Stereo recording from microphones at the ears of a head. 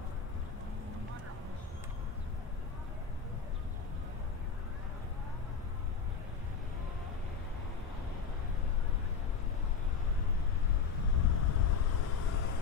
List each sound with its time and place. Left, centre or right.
11.1 s vehicle: left